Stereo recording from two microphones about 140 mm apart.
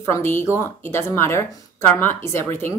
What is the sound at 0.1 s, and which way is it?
Speech, 20° left (ahead or behind).